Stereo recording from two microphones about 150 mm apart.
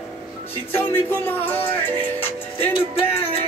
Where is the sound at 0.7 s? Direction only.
15° left (ahead or behind).